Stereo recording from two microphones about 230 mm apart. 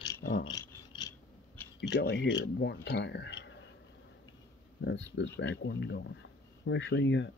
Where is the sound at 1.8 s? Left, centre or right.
Left.